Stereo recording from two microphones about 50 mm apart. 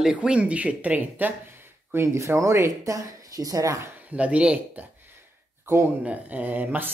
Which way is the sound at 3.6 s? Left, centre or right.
Right.